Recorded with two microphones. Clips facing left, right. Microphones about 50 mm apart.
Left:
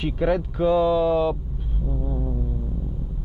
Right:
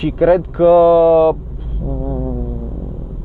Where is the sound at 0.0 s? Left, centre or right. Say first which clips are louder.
Right 10 dB; centre.